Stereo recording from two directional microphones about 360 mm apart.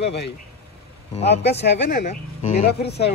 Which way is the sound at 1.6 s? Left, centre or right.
Left.